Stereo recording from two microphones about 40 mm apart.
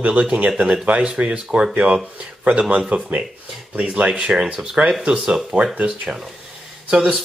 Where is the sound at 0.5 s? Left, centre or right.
Right.